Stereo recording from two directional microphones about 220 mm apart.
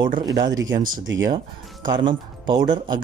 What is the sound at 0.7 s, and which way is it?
Speech, 40° right (ahead or behind).